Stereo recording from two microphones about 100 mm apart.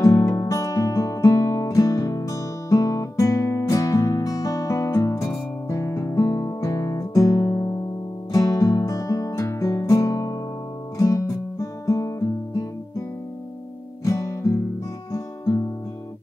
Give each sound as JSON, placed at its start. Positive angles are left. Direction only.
{"t": 0.0, "sound": "music", "side_deg": 30}
{"t": 5.7, "sound": "guitar", "side_deg": 30}
{"t": 8.3, "sound": "music", "side_deg": 35}
{"t": 14.0, "sound": "guitar", "side_deg": 30}
{"t": 15.1, "sound": "music", "side_deg": 35}